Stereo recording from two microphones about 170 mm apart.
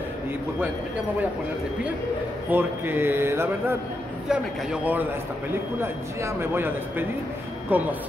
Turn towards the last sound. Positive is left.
turn(degrees=-10)  # may be behind; listen again after turning